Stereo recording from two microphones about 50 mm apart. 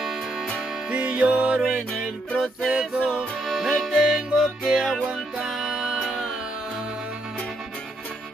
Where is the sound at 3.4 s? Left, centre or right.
Centre.